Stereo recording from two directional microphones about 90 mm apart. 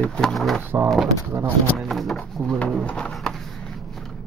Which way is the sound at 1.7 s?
Centre (ahead or behind).